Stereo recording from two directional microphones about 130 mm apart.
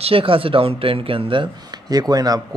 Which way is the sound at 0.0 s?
45° right (ahead or behind).